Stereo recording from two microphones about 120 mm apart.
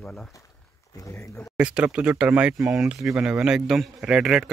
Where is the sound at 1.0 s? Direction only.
25° left (ahead or behind).